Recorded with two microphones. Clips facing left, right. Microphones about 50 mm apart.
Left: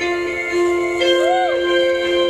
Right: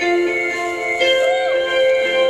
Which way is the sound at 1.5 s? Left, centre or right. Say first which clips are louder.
Right 1 dB; centre.